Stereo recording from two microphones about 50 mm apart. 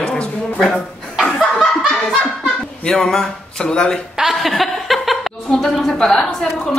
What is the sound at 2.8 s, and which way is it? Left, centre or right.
A man's voice, centre.